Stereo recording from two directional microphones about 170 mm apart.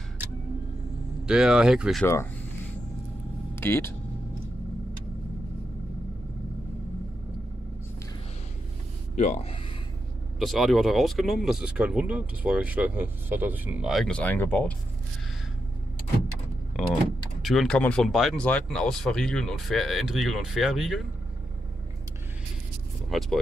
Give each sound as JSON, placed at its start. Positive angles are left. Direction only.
{"t": 1.2, "sound": "speech", "side_deg": -5}
{"t": 3.5, "sound": "speech", "side_deg": 15}
{"t": 9.1, "sound": "speech", "side_deg": 45}
{"t": 10.4, "sound": "speech", "side_deg": 0}
{"t": 16.8, "sound": "vehicle", "side_deg": 0}
{"t": 17.4, "sound": "speech", "side_deg": 0}
{"t": 23.0, "sound": "speech", "side_deg": 0}